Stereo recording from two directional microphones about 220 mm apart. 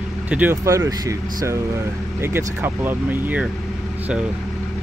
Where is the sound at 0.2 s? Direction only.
10° right (ahead or behind).